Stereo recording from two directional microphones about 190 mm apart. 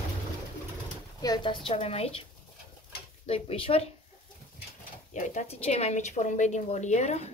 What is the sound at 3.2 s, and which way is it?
Speech, 30° left (ahead or behind).